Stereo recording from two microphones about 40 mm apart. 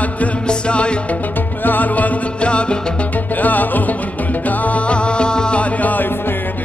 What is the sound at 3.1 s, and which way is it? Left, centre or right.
Music, left.